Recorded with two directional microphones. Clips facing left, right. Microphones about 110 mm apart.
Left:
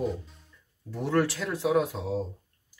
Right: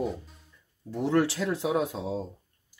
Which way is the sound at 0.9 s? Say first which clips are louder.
Right 1 dB; 25° right (ahead or behind).